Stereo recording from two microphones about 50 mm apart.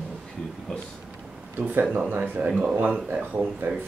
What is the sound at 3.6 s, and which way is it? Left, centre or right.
Speech, right.